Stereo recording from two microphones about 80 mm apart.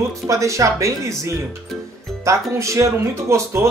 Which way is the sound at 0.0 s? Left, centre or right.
Right.